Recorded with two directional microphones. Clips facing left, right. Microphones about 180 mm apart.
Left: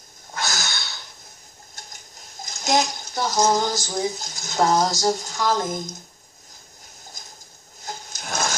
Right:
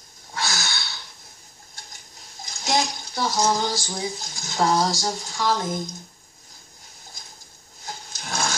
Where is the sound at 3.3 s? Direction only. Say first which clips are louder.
Left 3 dB; 45° left (ahead or behind).